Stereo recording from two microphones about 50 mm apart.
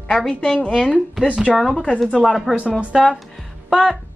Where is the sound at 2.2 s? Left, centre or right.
Centre.